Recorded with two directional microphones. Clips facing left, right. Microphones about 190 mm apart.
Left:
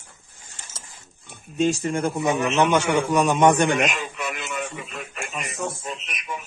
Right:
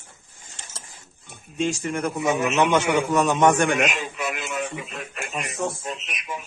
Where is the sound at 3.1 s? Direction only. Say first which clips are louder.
Left 2 dB; 15° left (ahead or behind).